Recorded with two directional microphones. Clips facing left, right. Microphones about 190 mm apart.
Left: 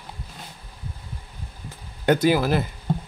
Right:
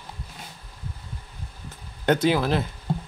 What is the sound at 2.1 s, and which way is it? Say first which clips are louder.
Speech: left 2 dB; 10° left (ahead or behind).